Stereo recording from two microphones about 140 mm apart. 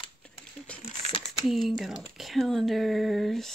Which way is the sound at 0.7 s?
10° left (ahead or behind).